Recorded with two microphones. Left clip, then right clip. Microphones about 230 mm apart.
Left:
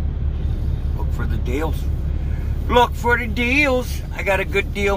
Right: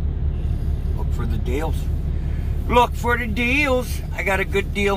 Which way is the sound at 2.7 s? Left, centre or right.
Centre.